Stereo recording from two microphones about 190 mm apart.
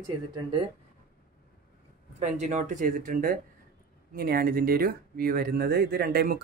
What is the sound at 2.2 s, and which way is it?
Speech, 40° right (ahead or behind).